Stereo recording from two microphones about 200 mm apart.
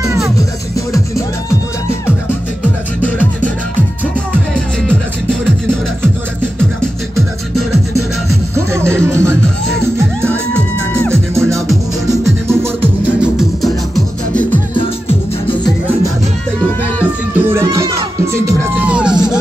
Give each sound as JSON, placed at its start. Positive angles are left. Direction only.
{"t": 0.4, "sound": "music", "side_deg": 15}
{"t": 8.5, "sound": "music", "side_deg": -15}
{"t": 11.3, "sound": "music", "side_deg": -15}
{"t": 17.5, "sound": "music", "side_deg": -15}